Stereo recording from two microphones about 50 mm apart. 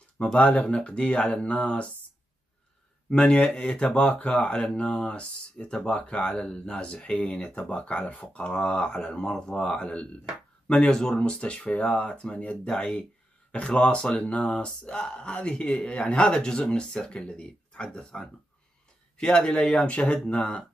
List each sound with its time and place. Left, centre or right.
0.2 s speech: left
3.1 s speech: centre